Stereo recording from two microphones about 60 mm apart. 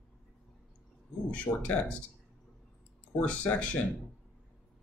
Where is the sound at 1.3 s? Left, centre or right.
Left.